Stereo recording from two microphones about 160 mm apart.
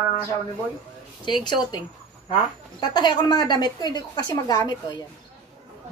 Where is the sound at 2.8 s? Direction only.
25° left (ahead or behind).